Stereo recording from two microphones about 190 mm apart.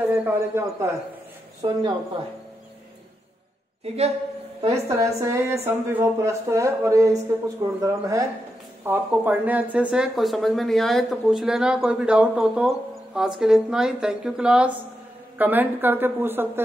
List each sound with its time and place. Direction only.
0.0 s speech: 10° right (ahead or behind)
1.6 s a woman's voice: 25° right (ahead or behind)
3.8 s a woman's voice: 35° right (ahead or behind)
4.8 s speech: 15° right (ahead or behind)